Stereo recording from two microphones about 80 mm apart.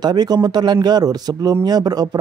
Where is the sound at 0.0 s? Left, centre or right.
Right.